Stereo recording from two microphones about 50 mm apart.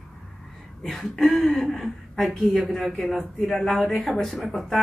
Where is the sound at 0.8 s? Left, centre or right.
Centre.